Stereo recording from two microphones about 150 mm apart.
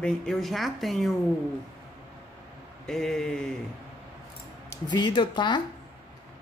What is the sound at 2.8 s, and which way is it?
Speech, 5° left (ahead or behind).